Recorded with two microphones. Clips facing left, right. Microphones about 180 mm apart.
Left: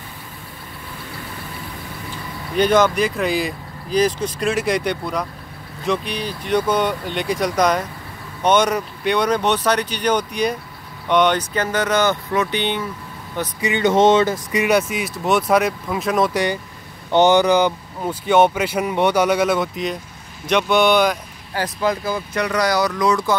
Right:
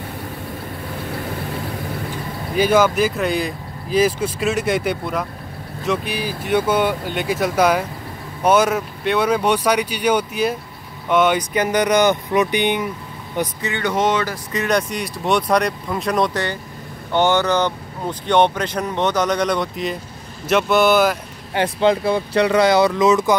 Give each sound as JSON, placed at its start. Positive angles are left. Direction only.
{"t": 2.5, "sound": "speech", "side_deg": -5}
{"t": 13.6, "sound": "speech", "side_deg": 15}
{"t": 14.5, "sound": "speech", "side_deg": 10}
{"t": 17.1, "sound": "speech", "side_deg": 15}
{"t": 21.5, "sound": "speech", "side_deg": -25}